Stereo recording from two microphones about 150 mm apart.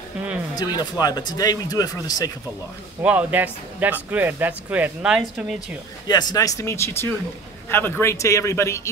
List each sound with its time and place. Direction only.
0.6 s speech: 25° left (ahead or behind)
3.0 s speech: 10° right (ahead or behind)
6.0 s speech: 25° left (ahead or behind)